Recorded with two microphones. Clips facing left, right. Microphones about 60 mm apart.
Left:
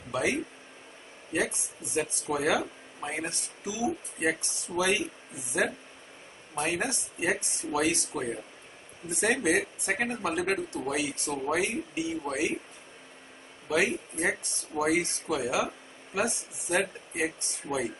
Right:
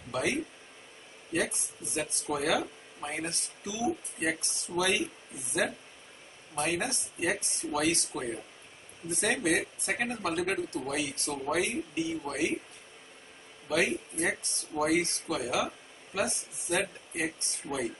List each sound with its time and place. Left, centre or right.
0.1 s speech: centre
2.3 s speech: centre
6.5 s speech: centre
13.7 s speech: centre